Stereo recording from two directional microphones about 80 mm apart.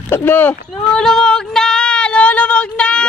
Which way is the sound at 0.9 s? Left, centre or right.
Centre.